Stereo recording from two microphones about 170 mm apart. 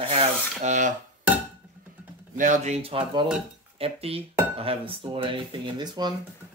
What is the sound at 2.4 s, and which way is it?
Speech, 45° right (ahead or behind).